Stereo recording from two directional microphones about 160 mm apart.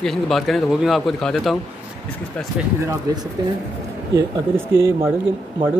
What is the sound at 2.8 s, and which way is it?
Speech, 25° right (ahead or behind).